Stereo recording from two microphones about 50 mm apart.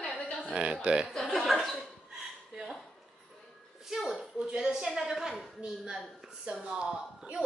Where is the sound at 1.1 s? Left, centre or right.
Centre.